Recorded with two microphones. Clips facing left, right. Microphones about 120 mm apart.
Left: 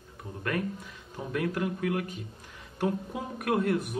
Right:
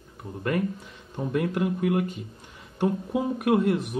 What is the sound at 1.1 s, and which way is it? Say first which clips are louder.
Speech: right 4 dB; 25° right (ahead or behind).